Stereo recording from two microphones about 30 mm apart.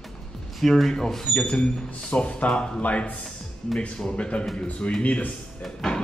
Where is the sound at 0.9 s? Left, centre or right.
Centre.